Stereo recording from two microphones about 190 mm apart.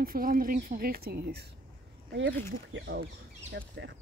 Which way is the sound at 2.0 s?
70° right (ahead or behind).